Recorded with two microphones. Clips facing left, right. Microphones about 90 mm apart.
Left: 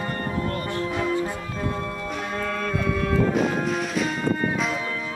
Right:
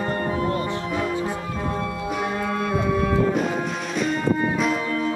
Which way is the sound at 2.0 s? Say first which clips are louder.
Right 5 dB; 5° right (ahead or behind).